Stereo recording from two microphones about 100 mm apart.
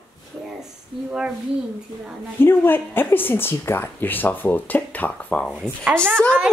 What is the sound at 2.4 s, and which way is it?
Speech, 20° left (ahead or behind).